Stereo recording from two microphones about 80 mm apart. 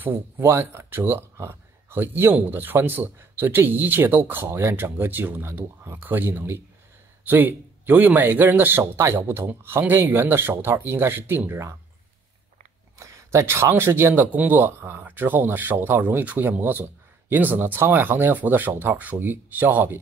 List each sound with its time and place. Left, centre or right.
0.0 s speech: right
13.0 s speech: right